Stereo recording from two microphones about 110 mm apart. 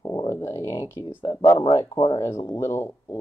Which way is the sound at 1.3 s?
45° left (ahead or behind).